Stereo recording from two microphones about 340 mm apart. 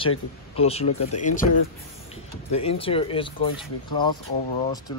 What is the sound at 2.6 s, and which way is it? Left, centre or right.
Speech, centre.